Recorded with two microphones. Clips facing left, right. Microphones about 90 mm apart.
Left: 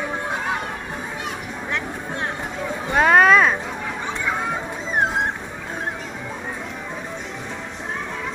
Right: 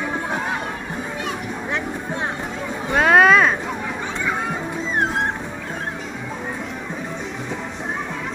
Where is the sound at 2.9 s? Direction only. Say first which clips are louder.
Even; centre (ahead or behind).